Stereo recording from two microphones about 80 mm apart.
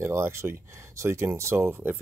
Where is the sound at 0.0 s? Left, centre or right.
Right.